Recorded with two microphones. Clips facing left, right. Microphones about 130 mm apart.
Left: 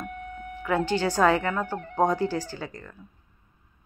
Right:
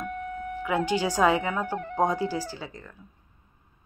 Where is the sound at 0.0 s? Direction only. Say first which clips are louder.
Right 4 dB; 45° right (ahead or behind).